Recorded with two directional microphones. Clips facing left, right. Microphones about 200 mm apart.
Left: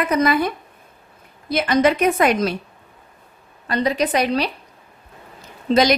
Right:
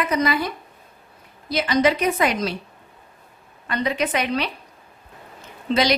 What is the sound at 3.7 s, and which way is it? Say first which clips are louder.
Speech: left 4 dB; 35° left (ahead or behind).